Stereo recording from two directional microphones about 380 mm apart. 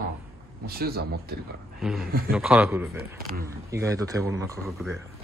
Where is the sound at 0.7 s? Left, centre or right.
Right.